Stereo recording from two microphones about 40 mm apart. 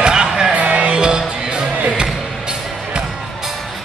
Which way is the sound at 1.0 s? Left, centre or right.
Right.